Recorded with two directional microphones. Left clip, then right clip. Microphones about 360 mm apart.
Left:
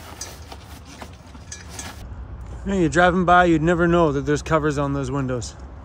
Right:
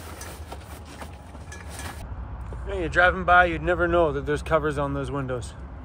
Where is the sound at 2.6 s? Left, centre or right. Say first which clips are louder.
Left 3 dB; left.